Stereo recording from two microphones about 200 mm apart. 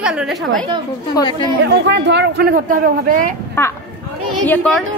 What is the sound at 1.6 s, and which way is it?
A man's voice, 60° right (ahead or behind).